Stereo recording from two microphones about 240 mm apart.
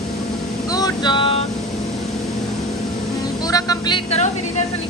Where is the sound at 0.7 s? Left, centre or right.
Centre.